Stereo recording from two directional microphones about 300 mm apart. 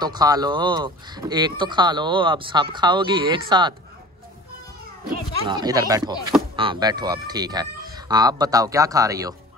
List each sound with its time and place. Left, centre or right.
0.0 s speech: centre
5.1 s speech: centre